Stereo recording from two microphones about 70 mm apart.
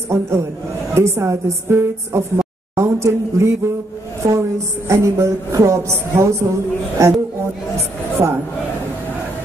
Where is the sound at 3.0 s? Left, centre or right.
Right.